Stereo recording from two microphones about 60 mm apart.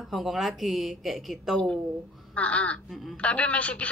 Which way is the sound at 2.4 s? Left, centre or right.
Left.